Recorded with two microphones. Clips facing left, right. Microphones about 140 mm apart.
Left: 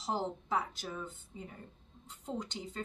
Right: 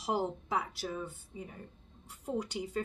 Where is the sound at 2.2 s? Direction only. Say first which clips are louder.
Right 4 dB; 10° right (ahead or behind).